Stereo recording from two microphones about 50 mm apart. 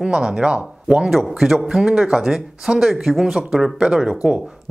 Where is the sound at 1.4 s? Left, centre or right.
Centre.